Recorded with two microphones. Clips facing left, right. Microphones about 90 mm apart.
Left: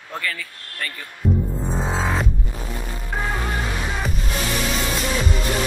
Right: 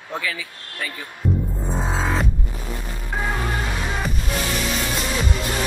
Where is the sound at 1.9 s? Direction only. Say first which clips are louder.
Even; centre (ahead or behind).